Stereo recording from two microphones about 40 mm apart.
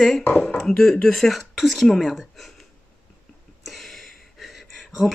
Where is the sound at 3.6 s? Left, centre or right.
Centre.